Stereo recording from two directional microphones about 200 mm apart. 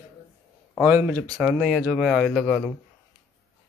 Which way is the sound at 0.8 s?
10° right (ahead or behind).